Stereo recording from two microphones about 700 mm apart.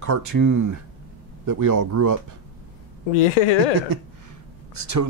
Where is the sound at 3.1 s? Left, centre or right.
Left.